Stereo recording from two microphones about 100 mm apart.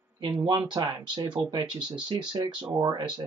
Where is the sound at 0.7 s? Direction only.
45° right (ahead or behind).